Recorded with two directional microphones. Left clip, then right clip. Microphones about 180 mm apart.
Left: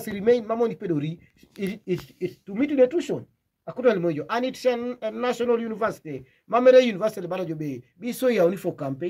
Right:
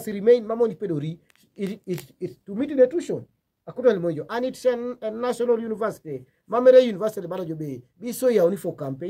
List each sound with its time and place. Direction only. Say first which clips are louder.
0.0 s speech: right 3 dB; 30° right (ahead or behind)
2.1 s speech: left 2 dB; 25° right (ahead or behind)